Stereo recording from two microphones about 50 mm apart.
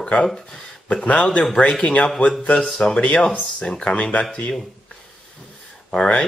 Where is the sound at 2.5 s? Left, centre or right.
Centre.